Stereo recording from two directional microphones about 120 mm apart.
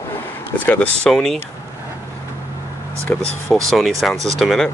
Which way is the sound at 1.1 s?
Centre (ahead or behind).